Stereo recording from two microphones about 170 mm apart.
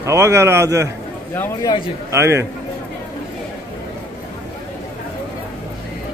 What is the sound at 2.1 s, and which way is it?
Speech, 15° right (ahead or behind).